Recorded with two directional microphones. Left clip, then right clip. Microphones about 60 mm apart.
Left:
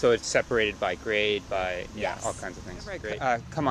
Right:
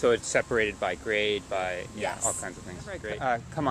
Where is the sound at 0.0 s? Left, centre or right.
Left.